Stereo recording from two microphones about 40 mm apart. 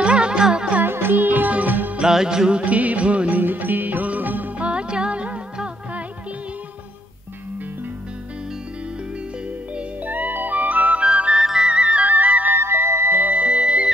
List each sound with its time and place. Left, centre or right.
0.0 s music: right
0.8 s music: right
2.0 s music: centre
2.6 s music: right
4.6 s music: right
10.0 s music: right
11.1 s music: right
11.3 s music: centre
11.7 s music: right
12.1 s music: right
12.5 s music: right
13.2 s music: right